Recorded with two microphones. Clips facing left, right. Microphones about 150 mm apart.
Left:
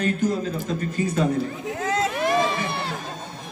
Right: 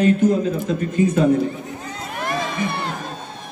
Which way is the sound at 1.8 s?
90° left.